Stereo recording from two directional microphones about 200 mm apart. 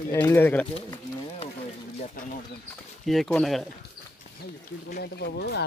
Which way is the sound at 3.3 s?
5° left (ahead or behind).